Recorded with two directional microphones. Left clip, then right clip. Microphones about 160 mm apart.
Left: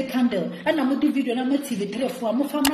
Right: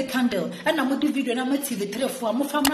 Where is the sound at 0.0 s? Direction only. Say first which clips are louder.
Left 1 dB; 5° left (ahead or behind).